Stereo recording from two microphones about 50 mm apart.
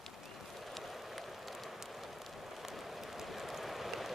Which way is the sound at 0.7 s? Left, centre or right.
Centre.